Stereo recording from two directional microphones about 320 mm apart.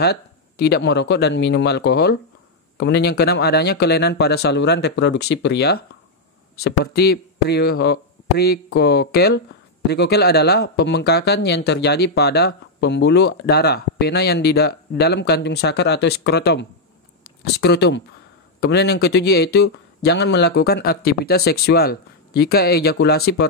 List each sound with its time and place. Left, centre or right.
0.0 s speech: left